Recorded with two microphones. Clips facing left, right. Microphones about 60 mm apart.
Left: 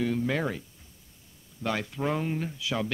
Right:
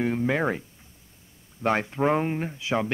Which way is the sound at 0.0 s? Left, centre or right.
Right.